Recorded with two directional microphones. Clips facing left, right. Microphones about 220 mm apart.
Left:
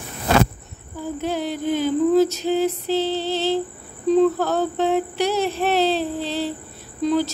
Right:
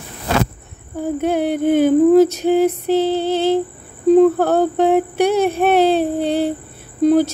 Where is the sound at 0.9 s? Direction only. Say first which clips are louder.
Right 7 dB; 55° right (ahead or behind).